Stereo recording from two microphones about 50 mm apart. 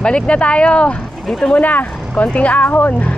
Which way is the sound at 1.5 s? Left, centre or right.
Left.